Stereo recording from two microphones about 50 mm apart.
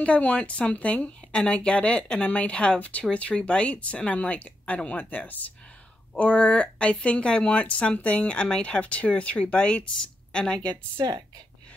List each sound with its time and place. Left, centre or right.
0.0 s speech: left
4.9 s speech: left; by 10.4 s centre